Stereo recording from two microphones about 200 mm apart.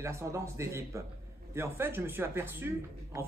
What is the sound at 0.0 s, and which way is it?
Speech, 15° right (ahead or behind).